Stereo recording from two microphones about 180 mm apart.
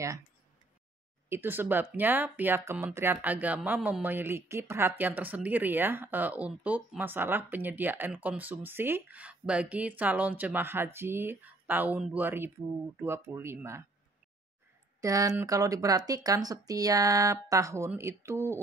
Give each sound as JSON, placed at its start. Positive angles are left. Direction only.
{"t": 1.3, "sound": "speech", "side_deg": -10}
{"t": 15.0, "sound": "speech", "side_deg": -20}